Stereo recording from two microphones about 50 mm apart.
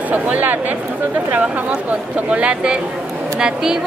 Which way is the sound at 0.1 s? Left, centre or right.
Right.